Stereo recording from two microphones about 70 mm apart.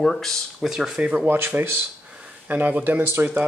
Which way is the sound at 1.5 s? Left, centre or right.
Right.